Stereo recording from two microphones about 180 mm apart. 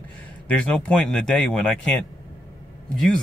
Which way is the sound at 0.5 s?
5° left (ahead or behind).